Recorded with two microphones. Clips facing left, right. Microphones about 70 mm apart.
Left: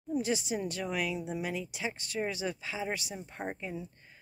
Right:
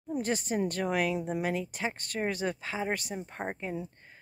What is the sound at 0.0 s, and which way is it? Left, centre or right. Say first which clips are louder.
Speech: even; right.